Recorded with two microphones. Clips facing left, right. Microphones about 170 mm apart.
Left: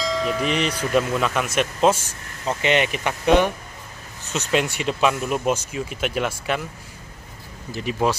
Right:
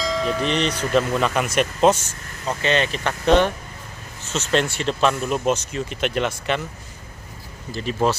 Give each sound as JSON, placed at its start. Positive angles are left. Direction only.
{"t": 0.0, "sound": "speech", "side_deg": 0}
{"t": 2.4, "sound": "speech", "side_deg": 15}
{"t": 7.7, "sound": "speech", "side_deg": 10}